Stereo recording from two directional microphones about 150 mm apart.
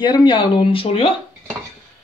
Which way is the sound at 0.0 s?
30° left (ahead or behind).